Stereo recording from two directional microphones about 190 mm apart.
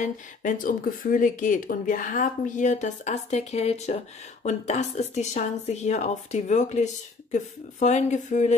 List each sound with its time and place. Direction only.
0.0 s speech: 45° left (ahead or behind)